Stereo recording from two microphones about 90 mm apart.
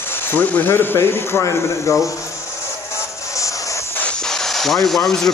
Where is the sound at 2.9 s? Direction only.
35° left (ahead or behind).